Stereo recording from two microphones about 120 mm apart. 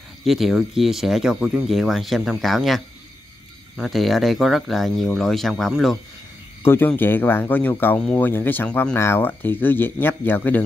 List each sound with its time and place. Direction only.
0.2 s speech: centre (ahead or behind)
6.6 s speech: 20° left (ahead or behind)